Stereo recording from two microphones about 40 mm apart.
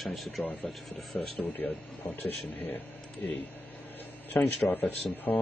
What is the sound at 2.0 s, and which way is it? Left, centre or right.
Speech, left.